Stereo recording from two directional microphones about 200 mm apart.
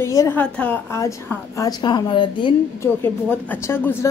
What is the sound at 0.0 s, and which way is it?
Speech, 15° left (ahead or behind).